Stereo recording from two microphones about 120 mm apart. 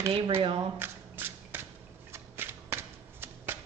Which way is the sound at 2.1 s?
20° right (ahead or behind).